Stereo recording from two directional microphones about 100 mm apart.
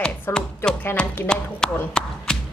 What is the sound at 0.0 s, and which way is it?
Music, 10° left (ahead or behind).